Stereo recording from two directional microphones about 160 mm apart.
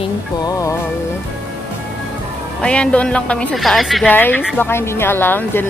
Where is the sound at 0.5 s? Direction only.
20° left (ahead or behind).